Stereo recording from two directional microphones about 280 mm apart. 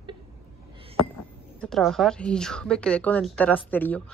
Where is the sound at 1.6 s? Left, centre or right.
Centre.